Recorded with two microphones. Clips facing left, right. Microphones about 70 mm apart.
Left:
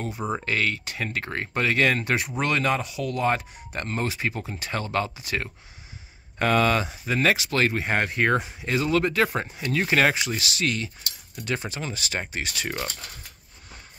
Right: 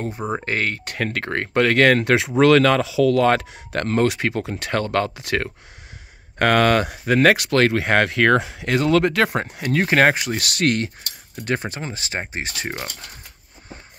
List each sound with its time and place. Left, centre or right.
0.3 s speech: right